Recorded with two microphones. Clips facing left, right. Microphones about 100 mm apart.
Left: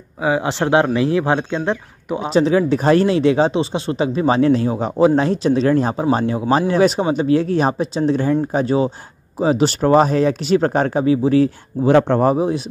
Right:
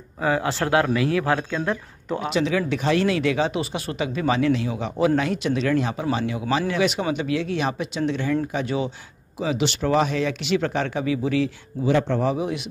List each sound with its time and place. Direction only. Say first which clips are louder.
0.2 s speech: left 4 dB; 20° left (ahead or behind)
2.2 s speech: left 8 dB; 35° left (ahead or behind); by 12.4 s 55° left (ahead or behind)
12.4 s speech: left 7 dB; 35° left (ahead or behind)